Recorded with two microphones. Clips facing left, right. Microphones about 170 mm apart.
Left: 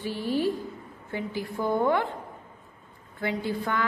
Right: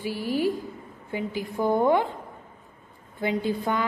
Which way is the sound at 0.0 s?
10° right (ahead or behind).